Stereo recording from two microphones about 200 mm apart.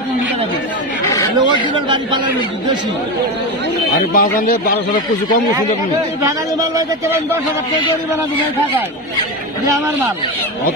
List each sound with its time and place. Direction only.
4.1 s speech: 45° left (ahead or behind)
6.2 s a man's voice: 15° right (ahead or behind)